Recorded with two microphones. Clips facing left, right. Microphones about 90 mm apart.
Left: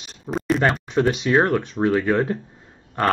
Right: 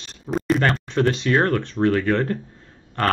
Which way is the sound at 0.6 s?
10° left (ahead or behind).